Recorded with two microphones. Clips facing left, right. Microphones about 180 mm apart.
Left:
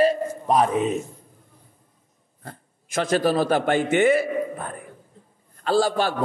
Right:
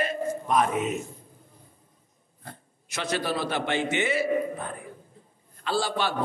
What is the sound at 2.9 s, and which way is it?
A man's voice, 45° left (ahead or behind).